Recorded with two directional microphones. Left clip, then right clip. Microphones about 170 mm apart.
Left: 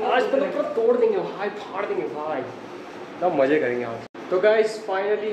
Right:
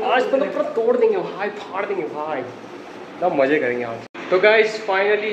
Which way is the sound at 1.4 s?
10° right (ahead or behind).